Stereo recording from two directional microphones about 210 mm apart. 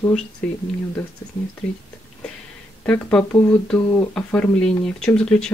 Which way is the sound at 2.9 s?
5° left (ahead or behind).